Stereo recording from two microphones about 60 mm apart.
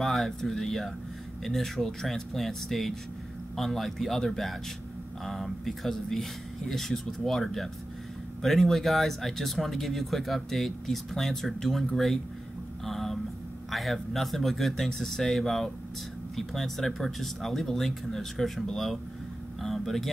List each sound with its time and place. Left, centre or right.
0.0 s speech: centre
12.8 s a sound: centre
13.7 s speech: centre
19.6 s vehicle: centre